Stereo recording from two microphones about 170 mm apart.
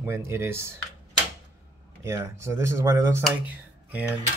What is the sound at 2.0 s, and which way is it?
Speech, 15° right (ahead or behind).